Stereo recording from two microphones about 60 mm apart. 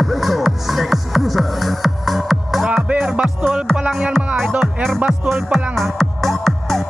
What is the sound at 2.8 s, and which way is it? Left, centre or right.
Music, right.